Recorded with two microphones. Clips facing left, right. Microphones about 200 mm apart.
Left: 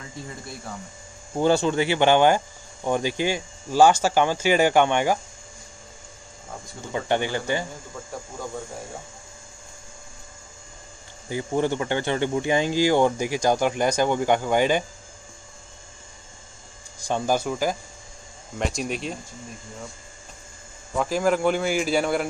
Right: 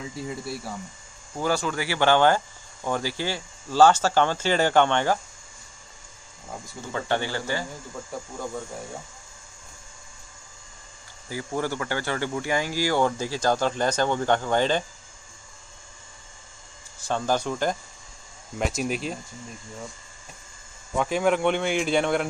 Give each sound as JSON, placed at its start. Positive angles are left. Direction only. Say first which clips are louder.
{"t": 0.0, "sound": "speech", "louder": "right 5 dB", "side_deg": -5}
{"t": 1.3, "sound": "speech", "louder": "left 6 dB", "side_deg": 25}
{"t": 6.9, "sound": "speech", "louder": "left 3 dB", "side_deg": 15}
{"t": 11.2, "sound": "speech", "louder": "left 5 dB", "side_deg": 20}
{"t": 17.1, "sound": "speech", "louder": "left 2 dB", "side_deg": 10}
{"t": 20.9, "sound": "speech", "louder": "left 1 dB", "side_deg": 0}